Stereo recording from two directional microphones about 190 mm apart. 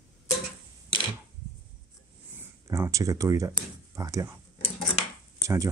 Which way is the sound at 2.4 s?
15° right (ahead or behind).